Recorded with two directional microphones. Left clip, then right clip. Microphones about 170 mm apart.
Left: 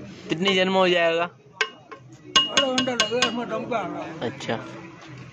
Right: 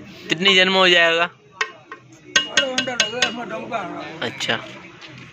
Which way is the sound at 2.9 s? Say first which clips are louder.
Right 2 dB; 30° left (ahead or behind).